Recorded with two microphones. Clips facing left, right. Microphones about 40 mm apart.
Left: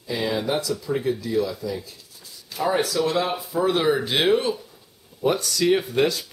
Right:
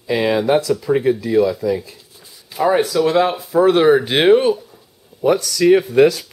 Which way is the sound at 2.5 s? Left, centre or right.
Centre.